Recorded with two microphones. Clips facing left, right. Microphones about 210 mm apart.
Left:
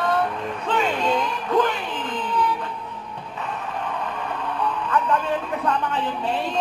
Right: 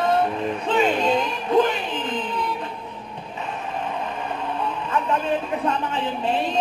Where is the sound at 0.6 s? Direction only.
20° right (ahead or behind).